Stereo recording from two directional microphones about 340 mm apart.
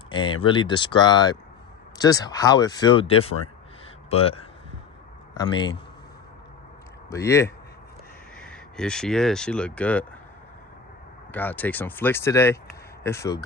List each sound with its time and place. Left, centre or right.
0.1 s speech: centre
7.1 s speech: centre
11.3 s speech: centre